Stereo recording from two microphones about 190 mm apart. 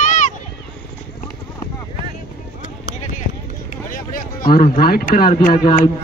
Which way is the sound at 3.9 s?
45° left (ahead or behind).